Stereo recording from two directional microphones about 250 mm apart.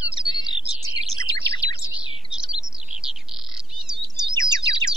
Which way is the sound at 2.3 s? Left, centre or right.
Centre.